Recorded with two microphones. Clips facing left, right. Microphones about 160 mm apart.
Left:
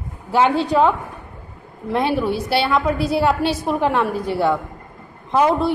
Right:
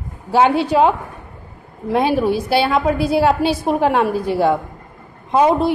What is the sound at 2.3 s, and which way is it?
A woman's voice, 15° right (ahead or behind).